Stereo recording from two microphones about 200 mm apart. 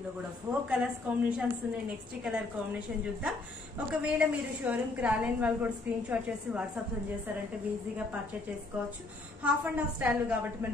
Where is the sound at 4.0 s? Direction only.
5° right (ahead or behind).